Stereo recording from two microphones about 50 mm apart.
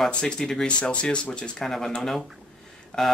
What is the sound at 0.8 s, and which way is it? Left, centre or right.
Speech, left.